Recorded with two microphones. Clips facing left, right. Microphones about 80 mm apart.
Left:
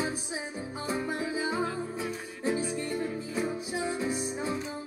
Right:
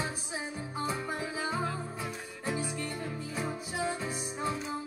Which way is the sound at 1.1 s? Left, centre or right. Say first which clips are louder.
Left 3 dB; centre.